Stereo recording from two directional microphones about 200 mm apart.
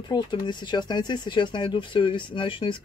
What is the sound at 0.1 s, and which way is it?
Speech, 20° left (ahead or behind).